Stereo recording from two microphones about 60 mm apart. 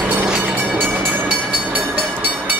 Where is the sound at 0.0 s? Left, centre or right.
Right.